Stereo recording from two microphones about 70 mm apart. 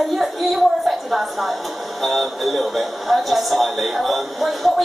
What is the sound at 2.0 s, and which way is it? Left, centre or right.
A man's voice, centre.